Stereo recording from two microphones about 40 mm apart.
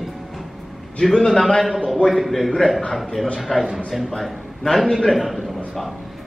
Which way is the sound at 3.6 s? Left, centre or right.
Centre.